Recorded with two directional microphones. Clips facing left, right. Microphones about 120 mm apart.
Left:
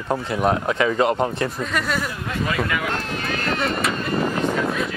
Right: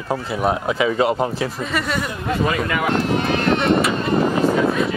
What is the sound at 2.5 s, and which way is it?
Speech, 30° right (ahead or behind).